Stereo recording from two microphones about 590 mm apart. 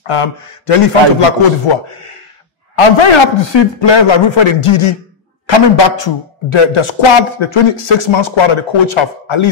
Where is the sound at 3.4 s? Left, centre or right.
Left.